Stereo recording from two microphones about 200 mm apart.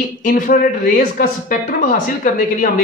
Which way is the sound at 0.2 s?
45° left (ahead or behind).